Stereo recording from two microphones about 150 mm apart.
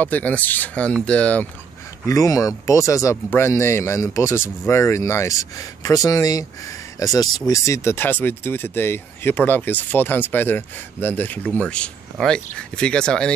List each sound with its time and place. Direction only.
0.0 s speech: 10° left (ahead or behind)
2.0 s speech: 25° left (ahead or behind); by 13.3 s 5° left (ahead or behind)